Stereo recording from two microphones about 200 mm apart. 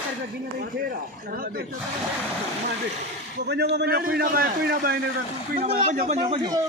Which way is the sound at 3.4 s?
55° right (ahead or behind).